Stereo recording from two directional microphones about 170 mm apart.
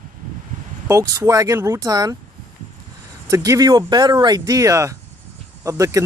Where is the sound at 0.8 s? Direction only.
20° right (ahead or behind).